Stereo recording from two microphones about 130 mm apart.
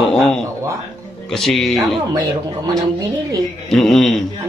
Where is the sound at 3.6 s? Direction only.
Centre (ahead or behind).